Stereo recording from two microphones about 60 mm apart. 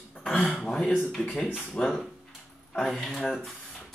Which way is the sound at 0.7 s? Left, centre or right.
Centre.